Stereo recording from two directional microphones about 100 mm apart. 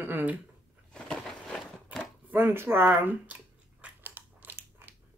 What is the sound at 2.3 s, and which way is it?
Speech, 20° right (ahead or behind).